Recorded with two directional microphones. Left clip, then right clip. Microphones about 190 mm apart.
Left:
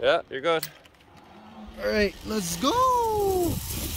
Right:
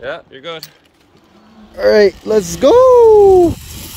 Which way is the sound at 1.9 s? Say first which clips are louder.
Right 16 dB; 20° right (ahead or behind).